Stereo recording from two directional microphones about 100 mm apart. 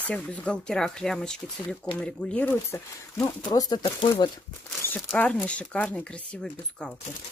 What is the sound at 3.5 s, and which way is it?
Speech, 40° left (ahead or behind).